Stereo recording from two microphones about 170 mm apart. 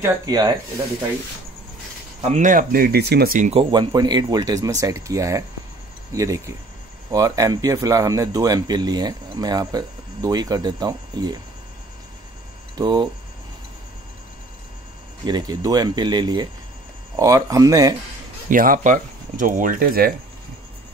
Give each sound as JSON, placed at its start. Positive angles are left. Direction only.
{"t": 0.0, "sound": "speech", "side_deg": -25}
{"t": 2.2, "sound": "speech", "side_deg": -45}
{"t": 3.3, "sound": "speech", "side_deg": -45}
{"t": 3.7, "sound": "speech", "side_deg": -25}
{"t": 12.7, "sound": "speech", "side_deg": -25}
{"t": 15.2, "sound": "speech", "side_deg": -25}
{"t": 18.5, "sound": "speech", "side_deg": -55}